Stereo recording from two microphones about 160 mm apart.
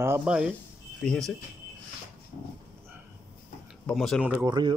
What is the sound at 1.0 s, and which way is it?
Speech, 5° left (ahead or behind).